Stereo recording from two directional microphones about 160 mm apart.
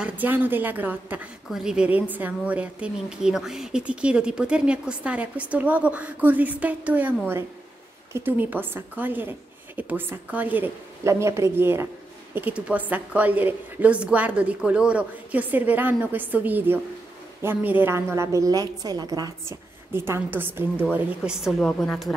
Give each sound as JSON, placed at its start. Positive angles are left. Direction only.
{"t": 0.0, "sound": "a woman's voice", "side_deg": -10}